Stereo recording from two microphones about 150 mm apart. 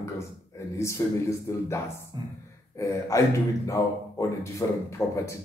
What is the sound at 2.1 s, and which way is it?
Speech, 30° right (ahead or behind).